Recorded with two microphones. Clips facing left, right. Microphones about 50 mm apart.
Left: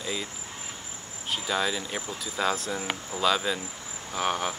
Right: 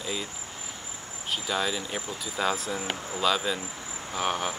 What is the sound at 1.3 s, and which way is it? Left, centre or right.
Speech, centre.